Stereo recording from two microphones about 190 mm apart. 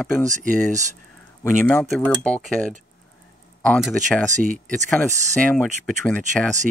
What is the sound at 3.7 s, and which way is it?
Speech, 5° left (ahead or behind).